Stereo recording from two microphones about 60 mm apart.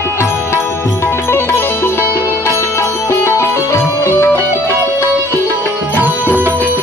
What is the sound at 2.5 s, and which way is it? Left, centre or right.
Music, left.